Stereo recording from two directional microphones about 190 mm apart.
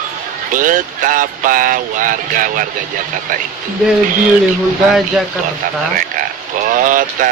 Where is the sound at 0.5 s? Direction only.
45° right (ahead or behind).